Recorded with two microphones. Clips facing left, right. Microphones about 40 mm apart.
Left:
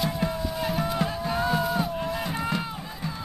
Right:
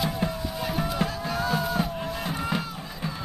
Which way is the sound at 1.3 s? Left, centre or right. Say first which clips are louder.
Left 3 dB; centre.